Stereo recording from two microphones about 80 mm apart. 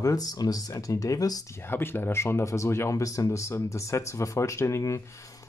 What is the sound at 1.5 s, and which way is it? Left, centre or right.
Speech, left.